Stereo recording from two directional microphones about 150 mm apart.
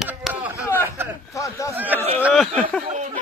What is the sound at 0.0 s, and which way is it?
Chop, 5° right (ahead or behind).